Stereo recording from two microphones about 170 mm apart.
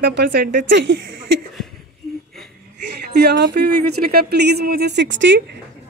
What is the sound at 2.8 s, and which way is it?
A woman's voice, 75° right (ahead or behind).